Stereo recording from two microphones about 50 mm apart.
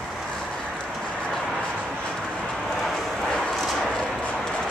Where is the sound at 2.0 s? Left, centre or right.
Centre.